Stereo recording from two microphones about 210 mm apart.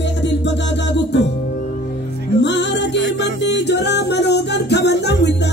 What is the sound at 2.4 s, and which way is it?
Music, 55° left (ahead or behind).